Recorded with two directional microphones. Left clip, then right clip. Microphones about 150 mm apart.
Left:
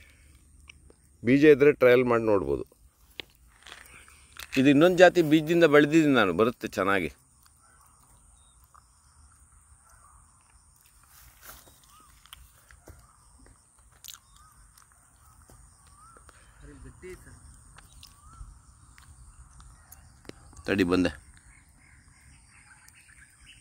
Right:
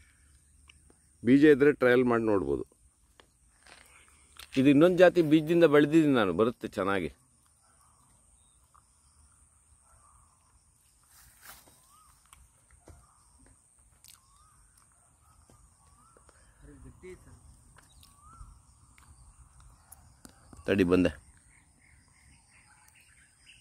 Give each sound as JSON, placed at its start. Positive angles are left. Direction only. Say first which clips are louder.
{"t": 0.7, "sound": "a sound", "louder": "left 7 dB", "side_deg": -25}
{"t": 1.2, "sound": "speech", "louder": "left 3 dB", "side_deg": -15}
{"t": 3.9, "sound": "biting", "louder": "left 7 dB", "side_deg": -25}
{"t": 4.4, "sound": "a sound", "louder": "left 3 dB", "side_deg": 55}
{"t": 4.6, "sound": "speech", "louder": "left 3 dB", "side_deg": -25}
{"t": 14.0, "sound": "a sound", "louder": "left 12 dB", "side_deg": -5}
{"t": 17.0, "sound": "vehicle", "louder": "left 4 dB", "side_deg": 5}
{"t": 17.8, "sound": "crow", "louder": "left 5 dB", "side_deg": -35}
{"t": 20.6, "sound": "speech", "louder": "even", "side_deg": -40}